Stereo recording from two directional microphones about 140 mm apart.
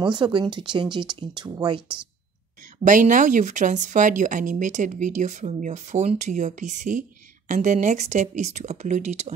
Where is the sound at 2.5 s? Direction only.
65° right (ahead or behind).